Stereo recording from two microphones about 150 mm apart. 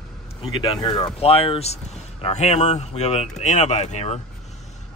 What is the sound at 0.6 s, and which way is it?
Speech, 35° left (ahead or behind).